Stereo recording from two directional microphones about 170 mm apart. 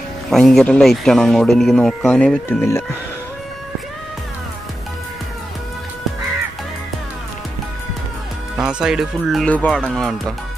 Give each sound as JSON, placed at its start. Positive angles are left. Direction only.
{"t": 0.3, "sound": "speech", "side_deg": 0}
{"t": 8.5, "sound": "speech", "side_deg": -5}